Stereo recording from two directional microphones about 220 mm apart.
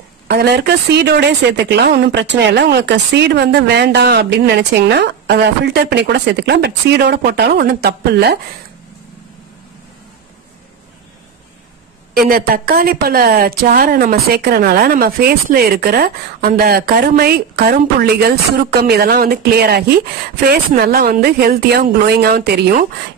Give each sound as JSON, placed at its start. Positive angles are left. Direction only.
{"t": 0.3, "sound": "speech", "side_deg": -45}
{"t": 12.3, "sound": "speech", "side_deg": -40}